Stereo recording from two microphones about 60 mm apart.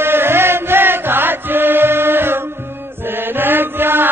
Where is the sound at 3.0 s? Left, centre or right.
Right.